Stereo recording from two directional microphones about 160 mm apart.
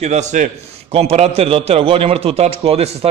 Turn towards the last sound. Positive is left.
turn(degrees=-40)  # may be behind; listen again after turning